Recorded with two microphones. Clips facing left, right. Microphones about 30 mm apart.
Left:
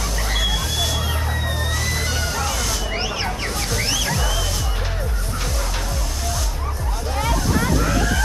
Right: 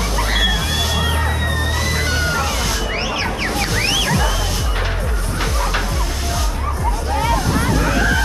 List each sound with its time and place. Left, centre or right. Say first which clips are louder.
1.8 s music: right 4 dB; right
3.2 s a sound: right 5 dB; right
7.8 s hubbub: right 4 dB; right